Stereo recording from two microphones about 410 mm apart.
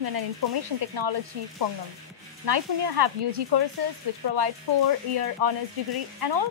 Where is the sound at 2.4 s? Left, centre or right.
Right.